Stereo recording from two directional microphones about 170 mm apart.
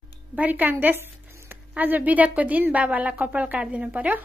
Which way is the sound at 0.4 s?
10° right (ahead or behind).